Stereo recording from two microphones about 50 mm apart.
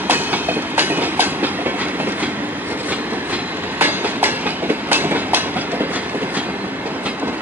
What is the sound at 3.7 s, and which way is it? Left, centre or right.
Train, right.